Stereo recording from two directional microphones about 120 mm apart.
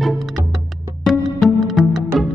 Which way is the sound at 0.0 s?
Centre (ahead or behind).